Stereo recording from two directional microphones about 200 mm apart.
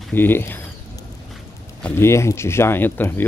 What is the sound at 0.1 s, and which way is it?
Speech, 10° left (ahead or behind).